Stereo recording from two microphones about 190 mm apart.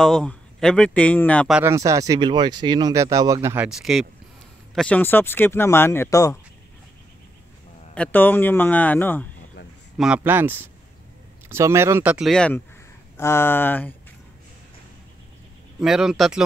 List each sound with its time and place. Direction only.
0.0 s speech: 5° left (ahead or behind)
1.5 s speech: 15° right (ahead or behind); by 6.4 s 15° left (ahead or behind)
7.9 s speech: 10° left (ahead or behind)
9.9 s speech: 5° right (ahead or behind)
15.8 s speech: centre (ahead or behind)